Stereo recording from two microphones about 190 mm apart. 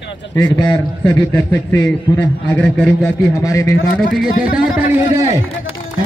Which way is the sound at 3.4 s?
15° left (ahead or behind).